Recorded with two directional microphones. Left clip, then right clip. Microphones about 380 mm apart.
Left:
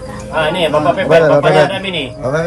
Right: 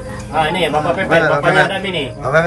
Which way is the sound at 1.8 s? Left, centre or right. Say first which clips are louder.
Left 1 dB; centre.